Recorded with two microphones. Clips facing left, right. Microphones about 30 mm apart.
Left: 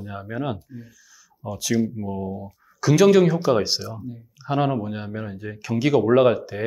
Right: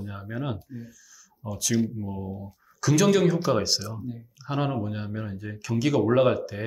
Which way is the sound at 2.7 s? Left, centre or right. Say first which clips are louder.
Left 6 dB; centre.